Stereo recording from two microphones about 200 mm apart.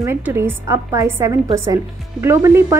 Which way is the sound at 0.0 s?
10° right (ahead or behind).